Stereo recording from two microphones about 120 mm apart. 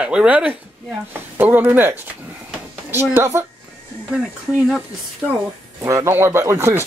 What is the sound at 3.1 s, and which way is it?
Speech, 20° right (ahead or behind).